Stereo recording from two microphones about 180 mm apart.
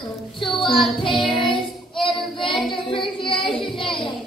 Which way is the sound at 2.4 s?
25° left (ahead or behind).